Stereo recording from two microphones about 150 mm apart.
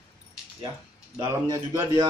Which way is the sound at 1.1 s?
20° right (ahead or behind).